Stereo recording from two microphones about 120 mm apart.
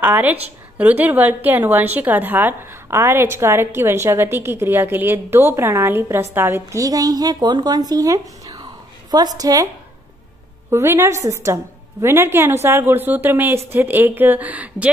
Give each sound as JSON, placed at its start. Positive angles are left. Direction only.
{"t": 0.0, "sound": "a woman's voice", "side_deg": -15}
{"t": 10.7, "sound": "a woman's voice", "side_deg": -20}